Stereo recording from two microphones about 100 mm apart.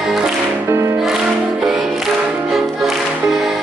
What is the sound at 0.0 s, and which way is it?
Music, 5° right (ahead or behind).